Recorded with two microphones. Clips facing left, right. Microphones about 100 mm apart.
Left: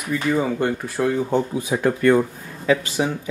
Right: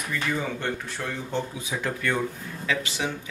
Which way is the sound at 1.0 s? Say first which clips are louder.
Left 13 dB; 45° left (ahead or behind).